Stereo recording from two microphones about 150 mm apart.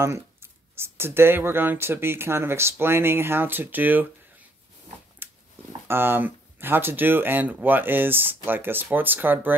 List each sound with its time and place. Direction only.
0.0 s speech: 15° right (ahead or behind)
5.2 s a sound: 15° right (ahead or behind)
5.7 s speech: 15° right (ahead or behind)